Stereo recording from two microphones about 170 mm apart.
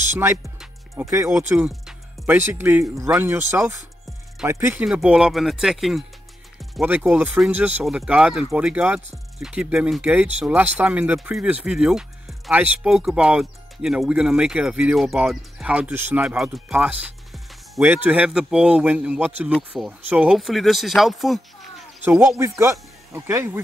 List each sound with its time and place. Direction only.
0.1 s speech: 15° right (ahead or behind)
0.6 s music: 15° right (ahead or behind)
1.5 s speech: 10° right (ahead or behind)
22.4 s speech: 15° right (ahead or behind)